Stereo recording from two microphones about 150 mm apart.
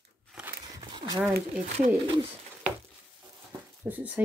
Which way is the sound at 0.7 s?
30° right (ahead or behind).